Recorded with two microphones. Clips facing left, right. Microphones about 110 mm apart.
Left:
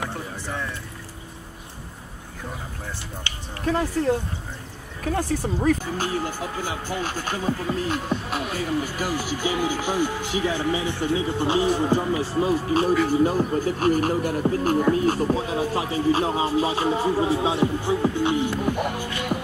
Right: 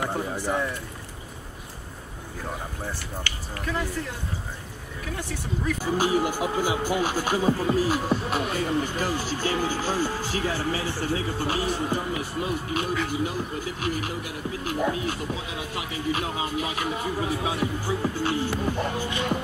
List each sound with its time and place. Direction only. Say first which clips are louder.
0.4 s speech: right 5 dB; 15° right (ahead or behind)
3.6 s speech: left 8 dB; 35° left (ahead or behind)
5.8 s speech: right 3 dB; 10° right (ahead or behind); by 19.0 s 15° left (ahead or behind)